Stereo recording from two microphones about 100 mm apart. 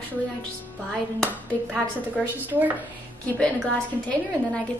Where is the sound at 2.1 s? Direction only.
15° right (ahead or behind).